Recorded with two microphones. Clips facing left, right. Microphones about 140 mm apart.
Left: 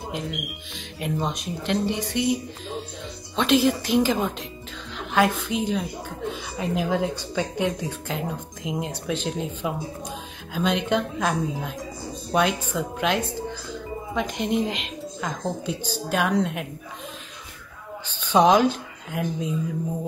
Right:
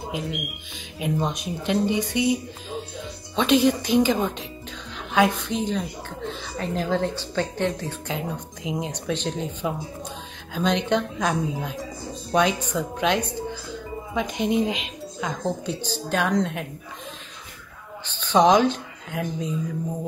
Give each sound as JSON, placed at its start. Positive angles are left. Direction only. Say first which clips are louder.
{"t": 0.1, "sound": "a woman's voice", "louder": "right 1 dB", "side_deg": 0}
{"t": 18.1, "sound": "speech", "louder": "even", "side_deg": 10}